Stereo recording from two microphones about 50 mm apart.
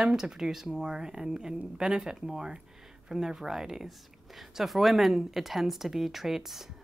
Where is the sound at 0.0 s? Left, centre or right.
Centre.